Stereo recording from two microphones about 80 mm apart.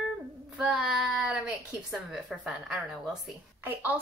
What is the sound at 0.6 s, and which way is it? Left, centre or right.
Speech, centre.